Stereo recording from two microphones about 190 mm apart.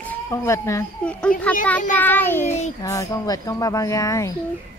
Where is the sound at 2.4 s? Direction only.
35° left (ahead or behind).